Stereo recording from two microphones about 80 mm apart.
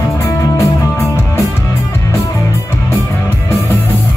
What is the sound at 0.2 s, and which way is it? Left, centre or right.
Music, left.